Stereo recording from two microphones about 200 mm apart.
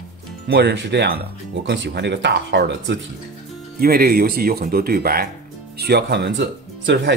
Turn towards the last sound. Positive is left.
turn(degrees=-60)  # may be behind; listen again after turning